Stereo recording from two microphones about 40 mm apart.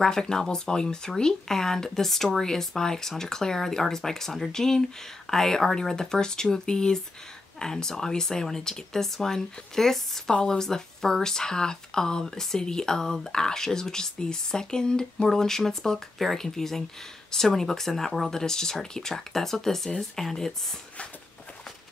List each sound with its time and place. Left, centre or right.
0.0 s speech: centre